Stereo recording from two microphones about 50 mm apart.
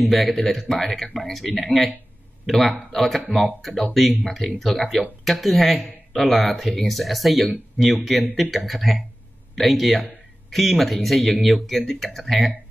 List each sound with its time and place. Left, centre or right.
0.0 s speech: centre
3.3 s speech: right
4.2 s speech: centre